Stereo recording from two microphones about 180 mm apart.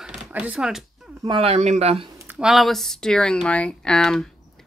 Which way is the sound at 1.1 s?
20° right (ahead or behind).